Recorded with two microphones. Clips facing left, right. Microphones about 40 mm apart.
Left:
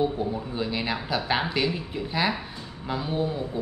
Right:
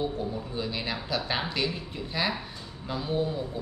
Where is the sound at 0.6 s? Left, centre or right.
Centre.